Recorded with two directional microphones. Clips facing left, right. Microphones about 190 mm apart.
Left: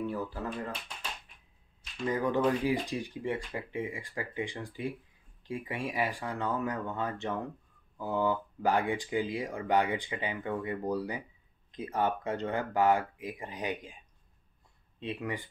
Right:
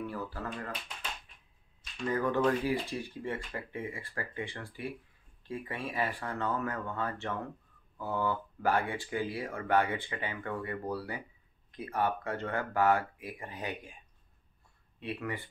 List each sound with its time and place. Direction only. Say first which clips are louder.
0.0 s a sound: left 3 dB; 20° left (ahead or behind)
2.0 s speech: left 1 dB; 15° left (ahead or behind)
15.0 s speech: left 1 dB; 20° left (ahead or behind)